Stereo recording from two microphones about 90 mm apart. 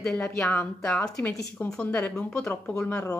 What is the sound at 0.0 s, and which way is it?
Speech, 10° left (ahead or behind).